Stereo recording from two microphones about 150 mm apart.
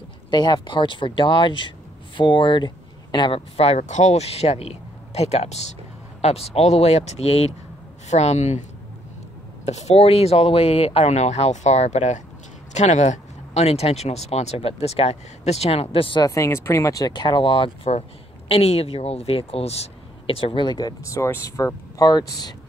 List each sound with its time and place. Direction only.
0.3 s speech: 30° left (ahead or behind); by 8.6 s 50° left (ahead or behind)
9.7 s speech: 45° left (ahead or behind); by 22.2 s 25° left (ahead or behind)